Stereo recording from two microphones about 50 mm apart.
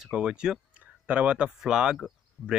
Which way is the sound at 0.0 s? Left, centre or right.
Centre.